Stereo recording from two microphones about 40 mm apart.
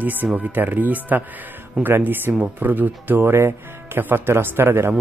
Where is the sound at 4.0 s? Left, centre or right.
Right.